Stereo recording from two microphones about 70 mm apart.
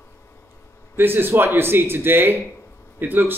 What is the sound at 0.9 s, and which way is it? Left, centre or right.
Speech, right.